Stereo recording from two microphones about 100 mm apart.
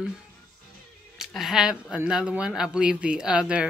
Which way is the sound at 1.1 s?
5° right (ahead or behind).